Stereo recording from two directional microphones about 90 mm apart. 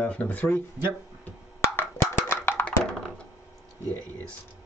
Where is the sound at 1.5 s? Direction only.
25° left (ahead or behind).